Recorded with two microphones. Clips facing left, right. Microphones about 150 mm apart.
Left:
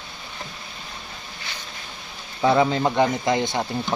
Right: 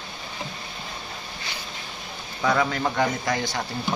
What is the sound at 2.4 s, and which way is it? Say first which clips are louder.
Speech: left 5 dB; 25° left (ahead or behind).